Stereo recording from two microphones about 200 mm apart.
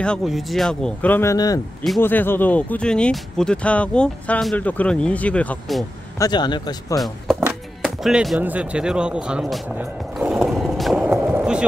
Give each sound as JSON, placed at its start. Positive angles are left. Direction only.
{"t": 0.0, "sound": "speech", "side_deg": 0}
{"t": 6.1, "sound": "speech", "side_deg": 20}
{"t": 7.0, "sound": "speech", "side_deg": 0}
{"t": 7.4, "sound": "music", "side_deg": -5}